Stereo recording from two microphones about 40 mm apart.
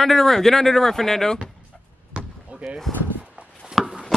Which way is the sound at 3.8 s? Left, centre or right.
Centre.